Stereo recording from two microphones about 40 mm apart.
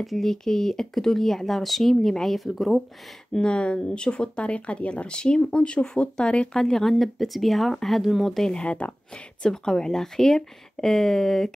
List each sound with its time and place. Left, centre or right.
0.0 s speech: centre
3.3 s speech: left
6.6 s speech: centre
7.0 s speech: centre
8.5 s speech: left
9.4 s speech: centre